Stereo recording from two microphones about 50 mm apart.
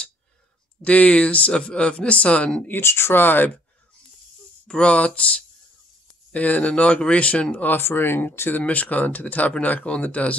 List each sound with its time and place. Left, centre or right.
0.8 s speech: left
2.8 s speech: left
4.6 s speech: left
6.3 s speech: left
7.7 s speech: left
8.6 s speech: left